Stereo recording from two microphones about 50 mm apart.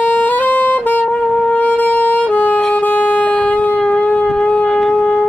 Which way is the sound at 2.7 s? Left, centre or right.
Left.